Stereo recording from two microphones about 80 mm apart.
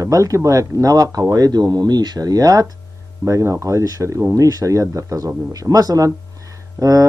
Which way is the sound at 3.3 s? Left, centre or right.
Right.